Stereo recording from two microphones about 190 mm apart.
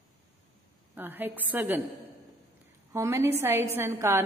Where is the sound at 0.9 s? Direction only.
10° right (ahead or behind).